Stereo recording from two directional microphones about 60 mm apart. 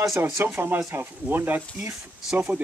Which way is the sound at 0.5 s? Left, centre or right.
Right.